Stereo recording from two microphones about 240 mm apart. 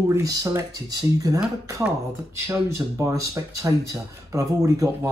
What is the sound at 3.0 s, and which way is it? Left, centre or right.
Speech, centre.